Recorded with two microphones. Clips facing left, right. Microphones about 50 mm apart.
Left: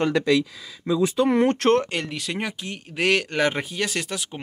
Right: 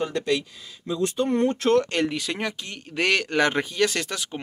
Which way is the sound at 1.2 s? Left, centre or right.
Left.